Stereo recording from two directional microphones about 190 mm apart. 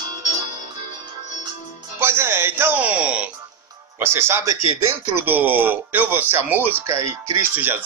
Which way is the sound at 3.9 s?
10° right (ahead or behind).